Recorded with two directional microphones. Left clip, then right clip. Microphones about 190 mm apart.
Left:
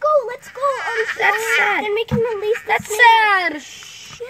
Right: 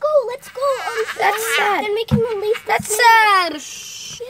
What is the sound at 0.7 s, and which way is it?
Baby cry, 60° right (ahead or behind).